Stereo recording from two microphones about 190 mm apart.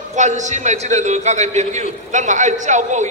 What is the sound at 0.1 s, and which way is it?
A man's voice, 40° right (ahead or behind).